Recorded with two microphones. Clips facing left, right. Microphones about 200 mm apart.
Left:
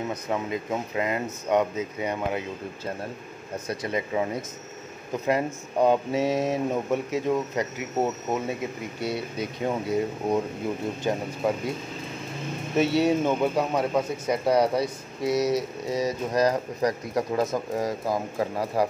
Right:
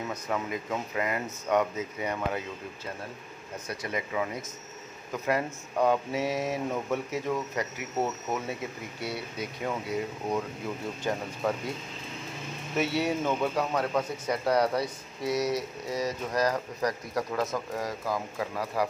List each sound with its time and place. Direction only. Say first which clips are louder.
0.3 s speech: left 3 dB; 20° left (ahead or behind)
3.6 s speech: left 5 dB; 30° left (ahead or behind)
12.7 s speech: left 6 dB; 25° left (ahead or behind)